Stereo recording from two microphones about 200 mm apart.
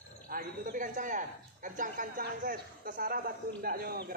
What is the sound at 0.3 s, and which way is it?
A man's voice, 45° right (ahead or behind).